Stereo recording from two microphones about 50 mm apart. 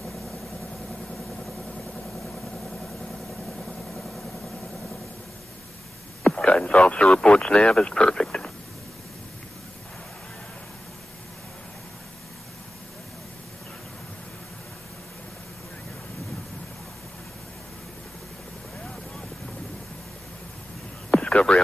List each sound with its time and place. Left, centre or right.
3.6 s vehicle: centre
6.2 s radio: centre
7.2 s speech: left
21.1 s a sound: left